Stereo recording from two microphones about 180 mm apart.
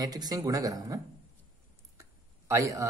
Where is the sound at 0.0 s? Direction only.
20° right (ahead or behind).